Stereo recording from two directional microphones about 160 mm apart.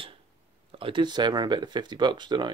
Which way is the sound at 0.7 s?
30° right (ahead or behind).